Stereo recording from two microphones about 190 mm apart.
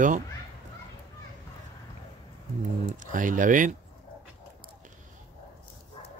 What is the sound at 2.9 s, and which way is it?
Speech, 45° right (ahead or behind).